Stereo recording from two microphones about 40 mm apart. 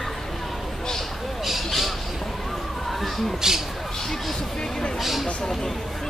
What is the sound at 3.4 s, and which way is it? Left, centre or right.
Speech, centre.